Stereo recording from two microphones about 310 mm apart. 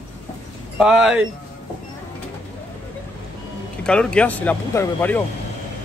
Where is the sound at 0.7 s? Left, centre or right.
Centre.